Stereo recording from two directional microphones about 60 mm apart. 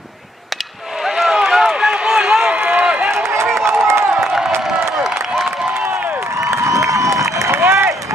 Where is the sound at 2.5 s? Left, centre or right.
Right.